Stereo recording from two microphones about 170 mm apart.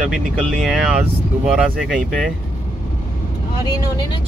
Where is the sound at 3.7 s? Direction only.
25° left (ahead or behind).